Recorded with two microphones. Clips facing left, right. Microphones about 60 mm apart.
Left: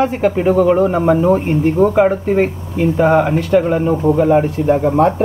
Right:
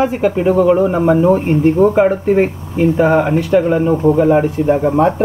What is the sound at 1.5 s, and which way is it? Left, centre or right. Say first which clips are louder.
Speech: right 2 dB; centre.